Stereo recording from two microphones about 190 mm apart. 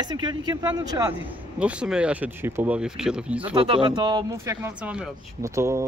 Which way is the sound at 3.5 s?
25° right (ahead or behind).